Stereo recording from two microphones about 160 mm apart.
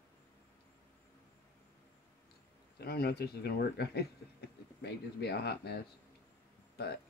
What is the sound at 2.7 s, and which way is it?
Speech, 85° left.